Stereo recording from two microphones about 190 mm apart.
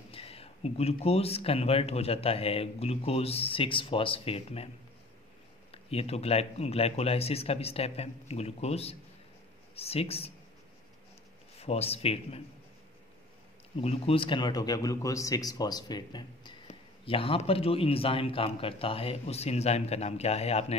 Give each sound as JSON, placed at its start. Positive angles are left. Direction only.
{"t": 0.1, "sound": "speech", "side_deg": 30}
{"t": 5.7, "sound": "speech", "side_deg": 30}
{"t": 11.6, "sound": "speech", "side_deg": 30}
{"t": 13.7, "sound": "a man's voice", "side_deg": 30}